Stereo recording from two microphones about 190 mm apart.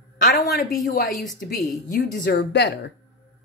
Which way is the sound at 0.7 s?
45° left (ahead or behind).